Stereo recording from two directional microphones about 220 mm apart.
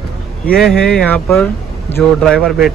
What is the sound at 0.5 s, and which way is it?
Speech, 5° left (ahead or behind).